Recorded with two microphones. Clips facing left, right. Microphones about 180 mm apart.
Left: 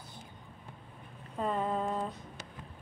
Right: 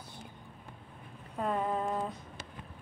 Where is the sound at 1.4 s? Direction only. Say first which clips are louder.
Even; 5° right (ahead or behind).